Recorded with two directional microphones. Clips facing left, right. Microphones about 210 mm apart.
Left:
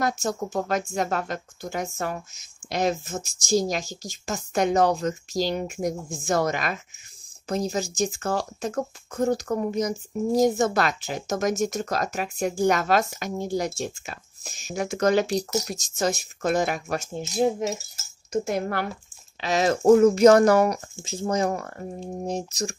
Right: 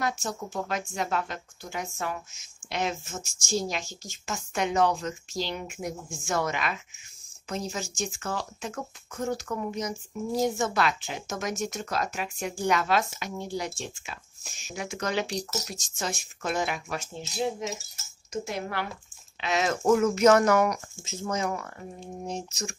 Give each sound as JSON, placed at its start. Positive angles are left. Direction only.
{"t": 0.0, "sound": "speech", "side_deg": 45}
{"t": 15.3, "sound": "speech", "side_deg": 10}
{"t": 15.7, "sound": "speech", "side_deg": 40}